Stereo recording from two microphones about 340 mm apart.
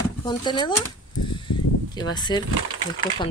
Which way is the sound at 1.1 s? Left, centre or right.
Left.